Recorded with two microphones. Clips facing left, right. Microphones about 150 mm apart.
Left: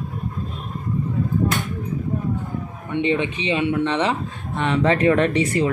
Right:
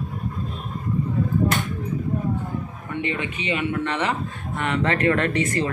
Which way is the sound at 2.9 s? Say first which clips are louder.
Left 6 dB; 20° left (ahead or behind).